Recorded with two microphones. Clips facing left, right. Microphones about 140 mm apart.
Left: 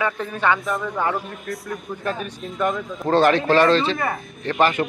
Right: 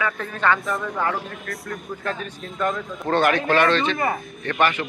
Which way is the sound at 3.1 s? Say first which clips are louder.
Left 3 dB; 30° left (ahead or behind).